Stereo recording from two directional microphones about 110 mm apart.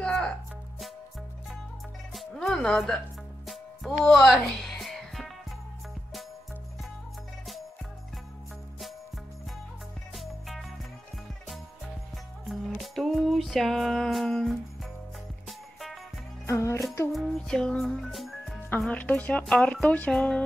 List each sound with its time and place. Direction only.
0.0 s music: 10° left (ahead or behind)
2.1 s music: 5° left (ahead or behind)
10.1 s music: centre (ahead or behind)
12.4 s music: centre (ahead or behind)
16.4 s music: 25° left (ahead or behind)
17.1 s music: 5° left (ahead or behind)
18.9 s speech: 10° left (ahead or behind)